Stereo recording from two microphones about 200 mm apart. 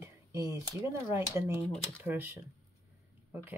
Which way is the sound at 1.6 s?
5° left (ahead or behind).